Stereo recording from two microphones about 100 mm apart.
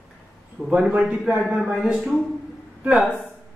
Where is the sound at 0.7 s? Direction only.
10° right (ahead or behind).